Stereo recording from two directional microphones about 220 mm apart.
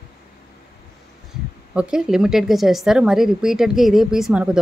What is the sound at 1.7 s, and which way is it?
A woman's voice, 5° right (ahead or behind).